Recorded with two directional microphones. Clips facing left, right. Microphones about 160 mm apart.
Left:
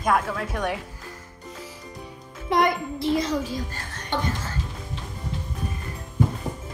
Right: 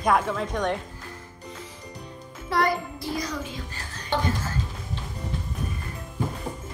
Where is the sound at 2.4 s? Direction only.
20° left (ahead or behind).